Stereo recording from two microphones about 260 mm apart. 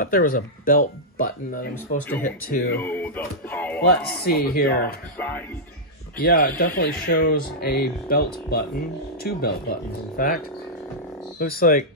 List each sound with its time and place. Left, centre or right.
0.0 s speech: left
2.8 s speech: centre
4.2 s speech: left
5.1 s speech: centre
6.2 s speech: left